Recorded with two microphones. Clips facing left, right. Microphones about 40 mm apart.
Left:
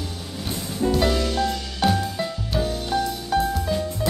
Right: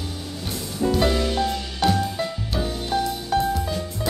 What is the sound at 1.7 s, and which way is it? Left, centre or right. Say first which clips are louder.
Music: even; centre.